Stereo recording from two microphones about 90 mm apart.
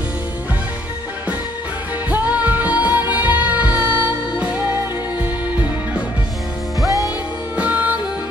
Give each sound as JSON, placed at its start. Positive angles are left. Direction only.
{"t": 2.0, "sound": "music", "side_deg": -15}
{"t": 5.2, "sound": "music", "side_deg": -20}
{"t": 7.5, "sound": "music", "side_deg": -15}